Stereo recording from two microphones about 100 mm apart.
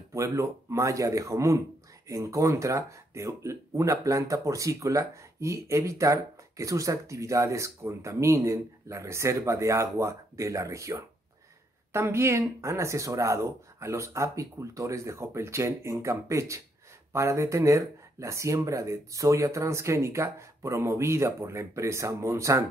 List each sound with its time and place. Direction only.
0.1 s speech: 30° right (ahead or behind)